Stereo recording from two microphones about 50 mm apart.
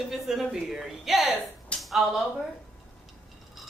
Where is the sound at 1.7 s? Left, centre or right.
Left.